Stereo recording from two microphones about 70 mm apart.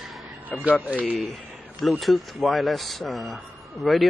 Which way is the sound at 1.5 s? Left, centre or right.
Centre.